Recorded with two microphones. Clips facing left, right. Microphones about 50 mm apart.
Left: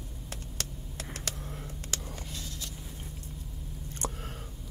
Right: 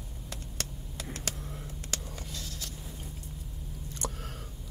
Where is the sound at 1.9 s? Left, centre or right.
Left.